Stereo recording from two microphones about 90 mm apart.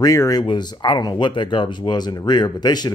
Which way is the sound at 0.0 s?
40° left (ahead or behind).